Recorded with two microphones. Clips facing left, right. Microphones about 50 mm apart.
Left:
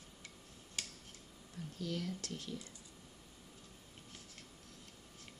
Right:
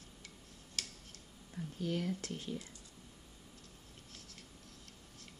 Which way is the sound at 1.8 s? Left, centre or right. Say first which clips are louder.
Right 4 dB; right.